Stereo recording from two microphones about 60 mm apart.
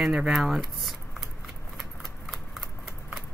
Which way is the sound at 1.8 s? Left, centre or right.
Centre.